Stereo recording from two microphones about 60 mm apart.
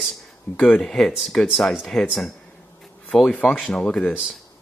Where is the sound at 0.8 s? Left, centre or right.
Centre.